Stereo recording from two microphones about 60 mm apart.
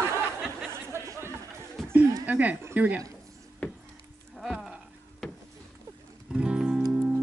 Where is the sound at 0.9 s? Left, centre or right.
Right.